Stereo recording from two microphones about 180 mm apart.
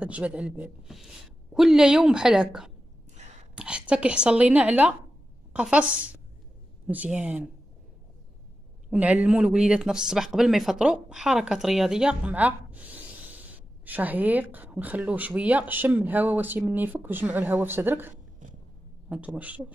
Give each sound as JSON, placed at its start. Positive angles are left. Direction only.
{"t": 0.0, "sound": "a woman's voice", "side_deg": -5}
{"t": 8.9, "sound": "speech", "side_deg": -10}
{"t": 18.4, "sound": "a sound", "side_deg": -45}
{"t": 19.0, "sound": "speech", "side_deg": -5}